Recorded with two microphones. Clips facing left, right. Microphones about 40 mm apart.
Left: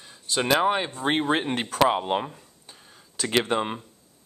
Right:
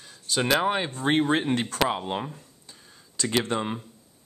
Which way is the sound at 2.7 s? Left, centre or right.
Centre.